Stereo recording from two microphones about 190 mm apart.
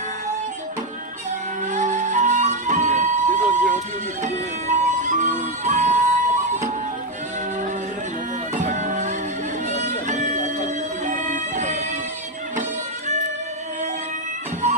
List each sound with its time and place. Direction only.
1.7 s music: 40° right (ahead or behind)
8.5 s music: 40° right (ahead or behind)